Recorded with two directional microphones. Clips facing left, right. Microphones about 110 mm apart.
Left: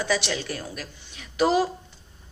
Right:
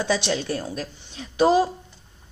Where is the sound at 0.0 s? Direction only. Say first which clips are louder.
Right 3 dB; 25° right (ahead or behind).